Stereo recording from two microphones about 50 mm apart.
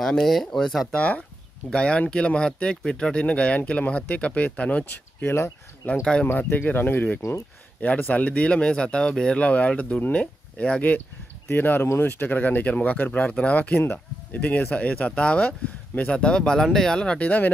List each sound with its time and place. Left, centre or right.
0.0 s speech: centre
0.9 s speech: left
5.8 s speech: left
8.1 s speech: left
9.4 s speech: left
11.4 s speech: left